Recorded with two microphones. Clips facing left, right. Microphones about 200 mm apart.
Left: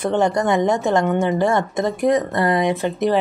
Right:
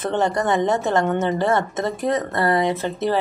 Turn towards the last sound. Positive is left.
turn(degrees=15)  # may be behind; listen again after turning